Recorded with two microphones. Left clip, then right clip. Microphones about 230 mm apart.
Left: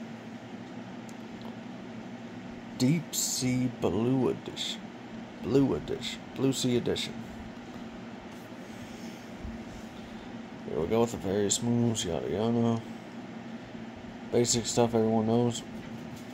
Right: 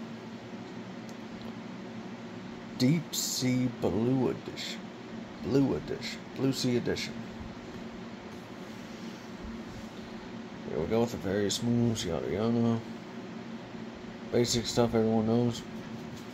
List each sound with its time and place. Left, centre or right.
2.8 s speech: centre
5.5 s speech: centre
10.9 s speech: centre
14.5 s speech: centre
14.8 s speech: centre